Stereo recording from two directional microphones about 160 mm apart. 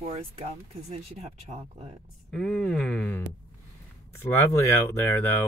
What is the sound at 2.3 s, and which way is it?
Speech, 5° left (ahead or behind).